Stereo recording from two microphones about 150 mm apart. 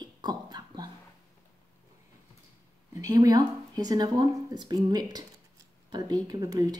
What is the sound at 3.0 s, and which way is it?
A woman's voice, 25° right (ahead or behind).